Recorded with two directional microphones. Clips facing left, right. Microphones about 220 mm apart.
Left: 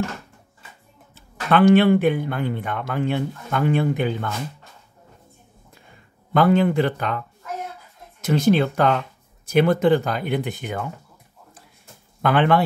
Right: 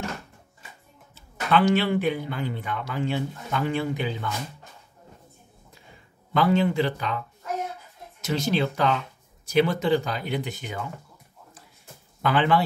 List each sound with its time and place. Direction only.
1.1 s speech: 55° left (ahead or behind)
6.3 s speech: 55° left (ahead or behind)
8.2 s speech: 55° left (ahead or behind)
12.2 s speech: 55° left (ahead or behind)